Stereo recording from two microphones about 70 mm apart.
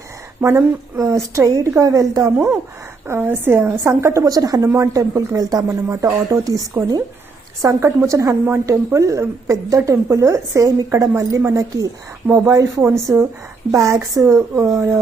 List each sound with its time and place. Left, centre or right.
0.4 s speech: right
1.0 s a woman's voice: right
3.1 s a woman's voice: right
4.3 s a woman's voice: right
7.6 s a woman's voice: right
12.8 s a woman's voice: right